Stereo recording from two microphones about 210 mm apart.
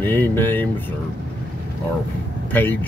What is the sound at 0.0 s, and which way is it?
Speech, 10° left (ahead or behind).